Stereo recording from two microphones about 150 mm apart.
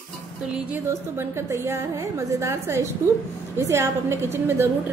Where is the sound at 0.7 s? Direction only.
15° right (ahead or behind).